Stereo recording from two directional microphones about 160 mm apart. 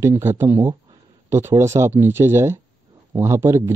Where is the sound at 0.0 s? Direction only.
15° right (ahead or behind).